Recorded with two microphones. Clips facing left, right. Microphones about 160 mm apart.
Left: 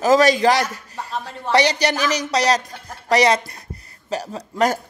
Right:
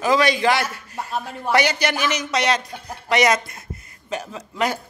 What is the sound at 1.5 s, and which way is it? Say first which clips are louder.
Speech: left 2 dB; 35° left (ahead or behind).